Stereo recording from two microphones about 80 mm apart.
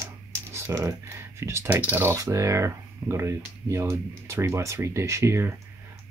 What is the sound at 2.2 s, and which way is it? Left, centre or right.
Speech, right.